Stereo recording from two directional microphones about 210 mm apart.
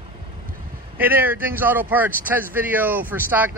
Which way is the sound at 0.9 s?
10° right (ahead or behind).